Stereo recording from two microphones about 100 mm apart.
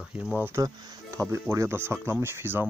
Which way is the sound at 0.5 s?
30° right (ahead or behind).